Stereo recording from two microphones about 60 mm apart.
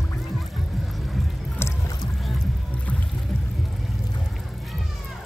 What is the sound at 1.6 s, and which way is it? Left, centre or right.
Boat, left.